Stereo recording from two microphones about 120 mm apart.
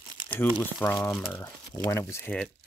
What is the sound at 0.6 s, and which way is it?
Speech, 15° left (ahead or behind).